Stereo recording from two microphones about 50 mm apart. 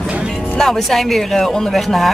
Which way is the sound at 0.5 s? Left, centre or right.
Centre.